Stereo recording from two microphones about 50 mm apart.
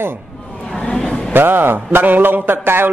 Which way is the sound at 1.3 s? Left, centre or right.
Right.